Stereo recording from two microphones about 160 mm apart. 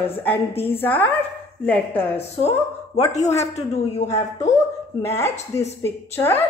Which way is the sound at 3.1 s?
45° left (ahead or behind).